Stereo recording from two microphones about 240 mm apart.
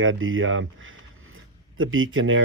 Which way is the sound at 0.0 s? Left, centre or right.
Right.